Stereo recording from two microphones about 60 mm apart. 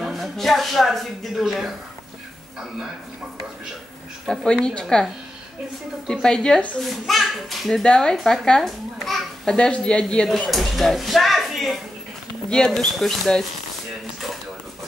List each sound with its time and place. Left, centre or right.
0.0 s speech: centre
4.5 s speech: centre
6.2 s speech: centre
6.9 s a child's voice: centre
9.6 s speech: centre
10.5 s speech: centre
12.4 s speech: centre